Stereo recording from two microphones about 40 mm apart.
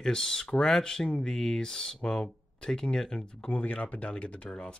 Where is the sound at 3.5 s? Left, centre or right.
Left.